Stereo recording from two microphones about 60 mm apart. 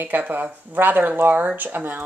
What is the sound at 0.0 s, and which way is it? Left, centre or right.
Speech, right.